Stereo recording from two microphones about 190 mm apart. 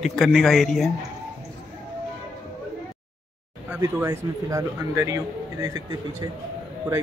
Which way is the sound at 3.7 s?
15° right (ahead or behind).